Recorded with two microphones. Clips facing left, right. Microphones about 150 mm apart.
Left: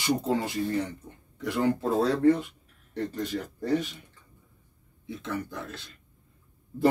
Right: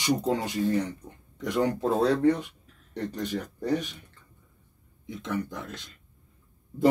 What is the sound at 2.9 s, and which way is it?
Speech, 15° right (ahead or behind).